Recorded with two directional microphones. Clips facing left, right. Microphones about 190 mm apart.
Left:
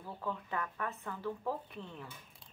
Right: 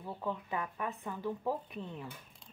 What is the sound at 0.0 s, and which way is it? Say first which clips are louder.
Speech: right 2 dB; 15° right (ahead or behind).